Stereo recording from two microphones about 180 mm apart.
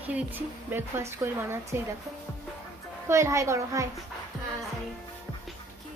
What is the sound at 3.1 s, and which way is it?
Speech, 15° right (ahead or behind).